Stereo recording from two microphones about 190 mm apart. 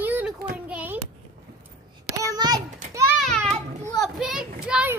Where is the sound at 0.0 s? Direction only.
10° right (ahead or behind).